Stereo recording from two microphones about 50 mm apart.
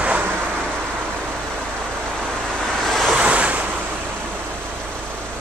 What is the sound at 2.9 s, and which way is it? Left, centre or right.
Vehicle, centre.